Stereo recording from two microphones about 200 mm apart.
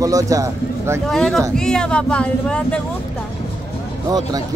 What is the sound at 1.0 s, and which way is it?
Speech, centre (ahead or behind).